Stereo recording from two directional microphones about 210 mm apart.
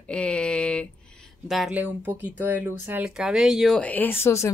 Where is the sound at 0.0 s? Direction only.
5° left (ahead or behind).